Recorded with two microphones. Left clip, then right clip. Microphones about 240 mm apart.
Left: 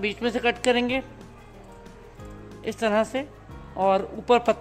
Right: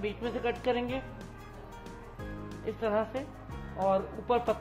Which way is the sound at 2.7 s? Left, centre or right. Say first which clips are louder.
Left 7 dB; left.